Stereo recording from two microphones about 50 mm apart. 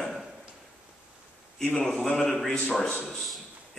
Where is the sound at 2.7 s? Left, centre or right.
Centre.